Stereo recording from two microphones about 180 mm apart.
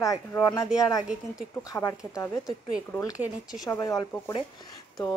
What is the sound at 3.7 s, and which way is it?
Speech, 20° left (ahead or behind).